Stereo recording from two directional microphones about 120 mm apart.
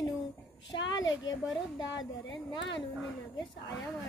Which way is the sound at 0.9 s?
35° left (ahead or behind).